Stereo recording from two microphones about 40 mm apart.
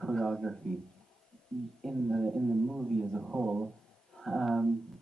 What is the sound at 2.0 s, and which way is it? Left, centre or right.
Speech, centre.